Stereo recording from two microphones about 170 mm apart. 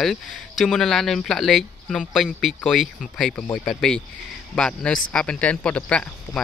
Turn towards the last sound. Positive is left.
turn(degrees=5)  # may be behind; listen again after turning